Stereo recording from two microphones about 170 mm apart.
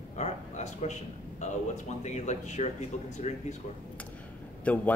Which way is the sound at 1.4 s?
45° left (ahead or behind).